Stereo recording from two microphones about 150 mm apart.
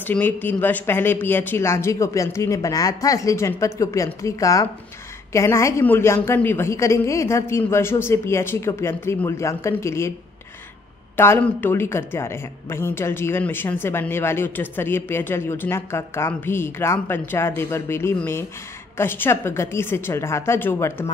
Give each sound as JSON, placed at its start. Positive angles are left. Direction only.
{"t": 0.0, "sound": "a woman's voice", "side_deg": 10}
{"t": 11.1, "sound": "a woman's voice", "side_deg": 15}